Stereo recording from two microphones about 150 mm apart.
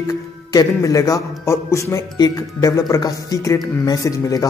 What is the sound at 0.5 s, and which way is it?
A man's voice, 25° left (ahead or behind).